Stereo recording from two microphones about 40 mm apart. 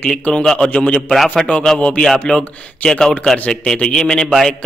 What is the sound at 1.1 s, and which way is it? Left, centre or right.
Speech, centre.